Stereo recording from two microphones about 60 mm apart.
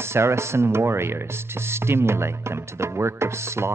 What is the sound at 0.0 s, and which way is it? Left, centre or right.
Speech, right.